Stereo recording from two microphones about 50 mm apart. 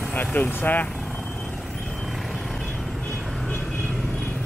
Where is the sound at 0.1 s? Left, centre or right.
Left.